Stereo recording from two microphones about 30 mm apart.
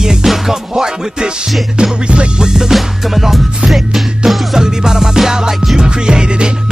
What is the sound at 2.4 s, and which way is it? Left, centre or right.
Music, right.